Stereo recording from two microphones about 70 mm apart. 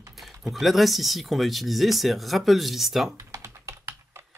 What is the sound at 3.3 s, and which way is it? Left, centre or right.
Typing, right.